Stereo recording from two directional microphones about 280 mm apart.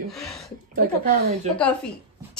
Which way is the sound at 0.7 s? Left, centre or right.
Right.